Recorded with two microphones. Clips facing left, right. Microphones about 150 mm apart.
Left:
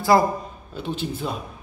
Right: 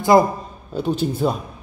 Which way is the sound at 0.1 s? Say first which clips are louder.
Right 4 dB; 20° right (ahead or behind).